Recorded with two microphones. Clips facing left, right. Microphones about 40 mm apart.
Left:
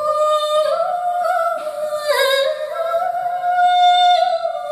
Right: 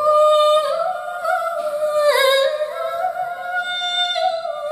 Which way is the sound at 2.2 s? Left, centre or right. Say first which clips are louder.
Right 1 dB; right.